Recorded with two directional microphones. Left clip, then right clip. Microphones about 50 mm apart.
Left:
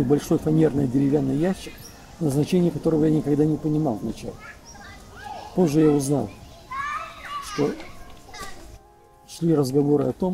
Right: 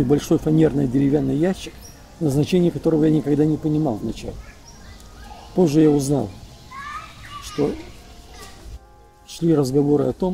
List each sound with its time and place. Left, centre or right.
0.0 s speech: centre
5.6 s speech: centre
7.6 s speech: left
9.3 s speech: centre